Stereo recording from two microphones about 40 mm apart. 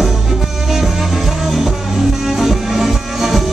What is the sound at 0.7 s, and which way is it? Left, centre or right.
Music, centre.